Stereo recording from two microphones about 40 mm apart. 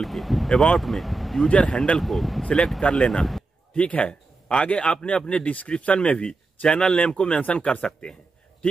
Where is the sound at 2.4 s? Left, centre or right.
Left.